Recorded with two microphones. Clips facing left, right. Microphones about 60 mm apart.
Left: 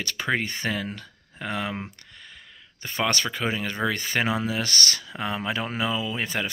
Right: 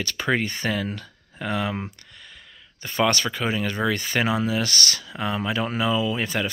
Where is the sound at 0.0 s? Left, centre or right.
Left.